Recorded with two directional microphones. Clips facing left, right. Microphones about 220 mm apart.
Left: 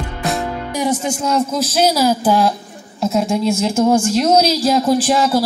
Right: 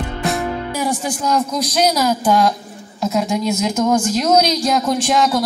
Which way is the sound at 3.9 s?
10° left (ahead or behind).